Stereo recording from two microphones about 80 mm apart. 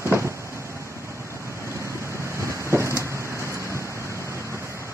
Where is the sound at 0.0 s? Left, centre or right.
Right.